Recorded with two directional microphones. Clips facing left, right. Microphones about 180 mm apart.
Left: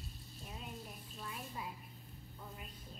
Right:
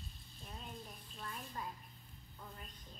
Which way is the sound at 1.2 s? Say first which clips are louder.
Even; 10° left (ahead or behind).